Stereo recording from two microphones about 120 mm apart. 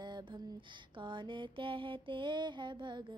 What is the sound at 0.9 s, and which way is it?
Music, 45° right (ahead or behind).